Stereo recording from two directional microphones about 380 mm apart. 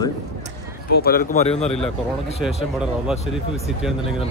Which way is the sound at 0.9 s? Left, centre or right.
Left.